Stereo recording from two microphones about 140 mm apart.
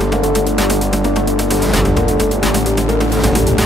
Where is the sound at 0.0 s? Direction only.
Centre (ahead or behind).